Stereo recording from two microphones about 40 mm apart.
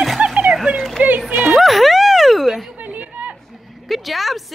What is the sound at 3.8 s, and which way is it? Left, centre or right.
Speech, centre.